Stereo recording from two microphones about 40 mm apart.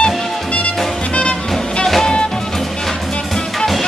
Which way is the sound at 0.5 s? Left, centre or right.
Left.